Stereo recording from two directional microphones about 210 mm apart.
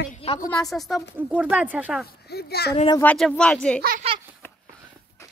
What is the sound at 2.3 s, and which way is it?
Speech, 50° left (ahead or behind).